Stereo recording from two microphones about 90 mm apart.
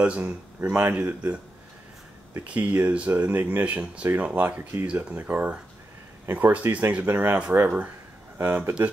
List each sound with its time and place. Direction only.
0.2 s speech: 20° right (ahead or behind)
2.4 s speech: 20° right (ahead or behind)